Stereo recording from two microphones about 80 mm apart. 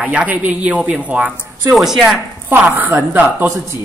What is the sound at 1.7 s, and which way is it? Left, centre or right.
Speech, centre.